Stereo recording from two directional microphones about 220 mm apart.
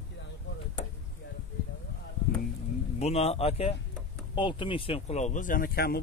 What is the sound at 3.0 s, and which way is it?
Speech, 30° left (ahead or behind).